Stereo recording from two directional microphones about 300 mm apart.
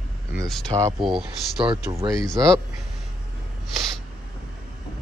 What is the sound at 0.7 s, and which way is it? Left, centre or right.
Speech, centre.